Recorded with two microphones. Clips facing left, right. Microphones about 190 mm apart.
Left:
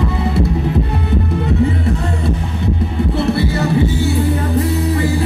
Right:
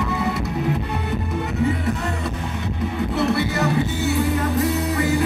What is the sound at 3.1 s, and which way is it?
Music, 30° left (ahead or behind).